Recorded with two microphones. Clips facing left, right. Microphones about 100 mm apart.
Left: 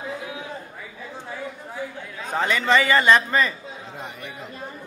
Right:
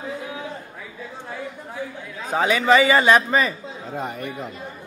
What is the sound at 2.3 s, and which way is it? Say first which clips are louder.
A man's voice: right 3 dB; 10° right (ahead or behind).